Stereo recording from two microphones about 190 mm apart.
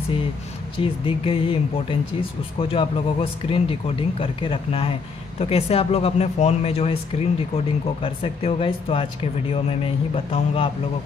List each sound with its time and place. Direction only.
0.7 s speech: 30° left (ahead or behind)